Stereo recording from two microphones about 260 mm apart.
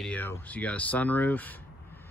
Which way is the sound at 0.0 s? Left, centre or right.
Centre.